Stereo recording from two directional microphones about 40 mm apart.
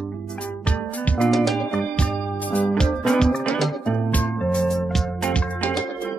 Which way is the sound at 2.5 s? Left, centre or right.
Left.